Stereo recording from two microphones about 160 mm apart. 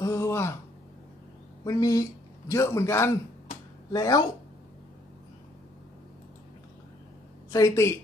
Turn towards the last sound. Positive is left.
turn(degrees=20)  # may be behind; listen again after turning